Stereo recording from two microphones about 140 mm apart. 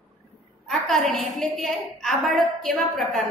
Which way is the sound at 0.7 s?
Centre (ahead or behind).